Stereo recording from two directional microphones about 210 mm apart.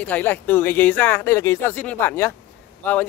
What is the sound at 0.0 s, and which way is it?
Speech, 10° left (ahead or behind).